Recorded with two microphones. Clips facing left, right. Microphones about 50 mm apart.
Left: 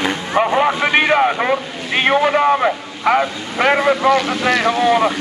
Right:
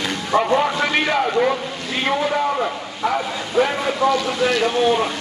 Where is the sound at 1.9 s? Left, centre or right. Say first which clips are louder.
Left 6 dB; left.